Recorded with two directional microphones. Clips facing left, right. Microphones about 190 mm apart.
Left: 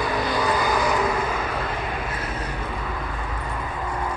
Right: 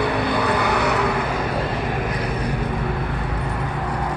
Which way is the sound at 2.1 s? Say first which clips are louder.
Right 5 dB; 15° right (ahead or behind).